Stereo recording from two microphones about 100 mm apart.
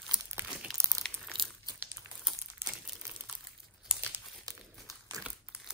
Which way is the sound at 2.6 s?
25° right (ahead or behind).